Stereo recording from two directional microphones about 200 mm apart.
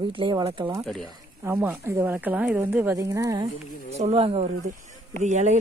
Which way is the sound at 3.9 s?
30° right (ahead or behind).